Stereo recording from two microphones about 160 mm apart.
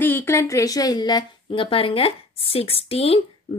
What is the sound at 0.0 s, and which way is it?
A woman's voice, 15° left (ahead or behind).